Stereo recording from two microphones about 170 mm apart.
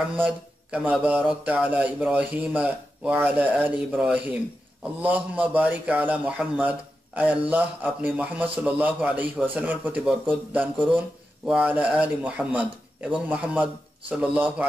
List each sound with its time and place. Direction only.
0.2 s speech: 10° right (ahead or behind)
11.4 s speech: 5° right (ahead or behind)